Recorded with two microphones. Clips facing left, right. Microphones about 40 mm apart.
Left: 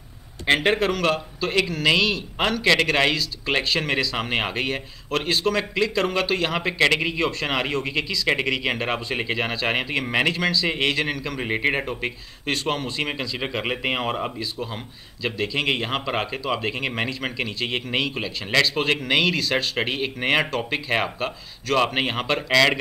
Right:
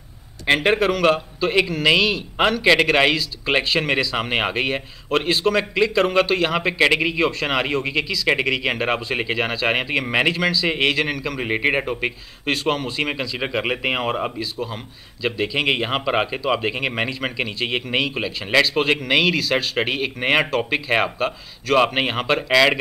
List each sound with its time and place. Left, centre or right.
0.5 s a man's voice: centre
11.4 s a man's voice: centre
14.4 s a man's voice: centre
15.3 s a man's voice: centre